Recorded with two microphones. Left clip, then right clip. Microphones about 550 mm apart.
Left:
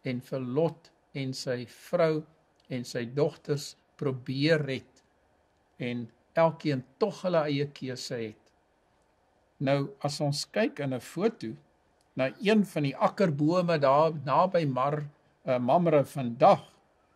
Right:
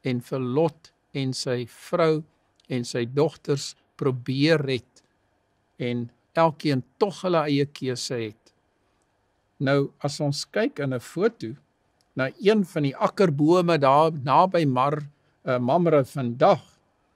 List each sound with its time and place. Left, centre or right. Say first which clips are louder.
0.0 s speech: right 6 dB; right
9.6 s speech: right 5 dB; right